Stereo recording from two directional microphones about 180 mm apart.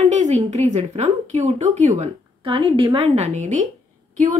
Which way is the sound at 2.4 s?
30° right (ahead or behind).